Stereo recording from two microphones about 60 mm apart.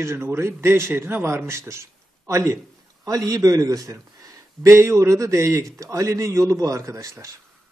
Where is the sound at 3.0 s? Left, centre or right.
Right.